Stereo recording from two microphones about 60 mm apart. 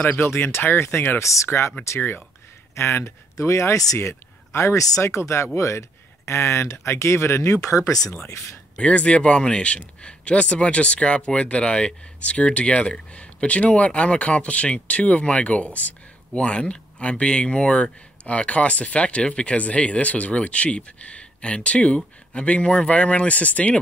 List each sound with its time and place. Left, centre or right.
0.0 s speech: left
0.3 s speech: left
1.2 s speech: left
2.0 s speech: left
2.7 s speech: left
4.7 s speech: left
8.7 s speech: centre